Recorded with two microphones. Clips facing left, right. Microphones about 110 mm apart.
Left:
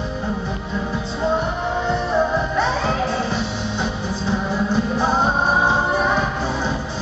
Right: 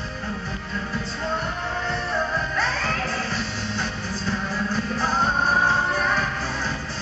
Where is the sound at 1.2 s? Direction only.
20° left (ahead or behind).